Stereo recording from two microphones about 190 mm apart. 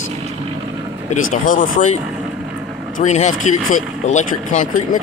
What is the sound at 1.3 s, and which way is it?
Speech, 45° left (ahead or behind).